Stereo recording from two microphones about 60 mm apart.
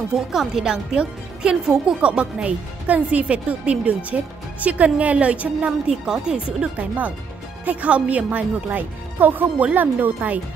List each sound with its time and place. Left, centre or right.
0.1 s speech: centre; by 5.7 s right
5.9 s speech: centre; by 10.4 s right